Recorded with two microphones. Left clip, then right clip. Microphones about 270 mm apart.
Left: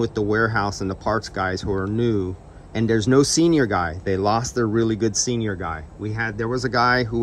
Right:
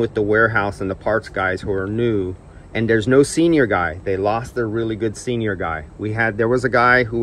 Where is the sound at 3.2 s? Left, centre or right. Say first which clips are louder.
Right 2 dB; left.